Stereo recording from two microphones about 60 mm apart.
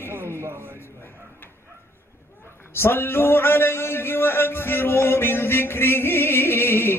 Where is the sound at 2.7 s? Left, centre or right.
Left.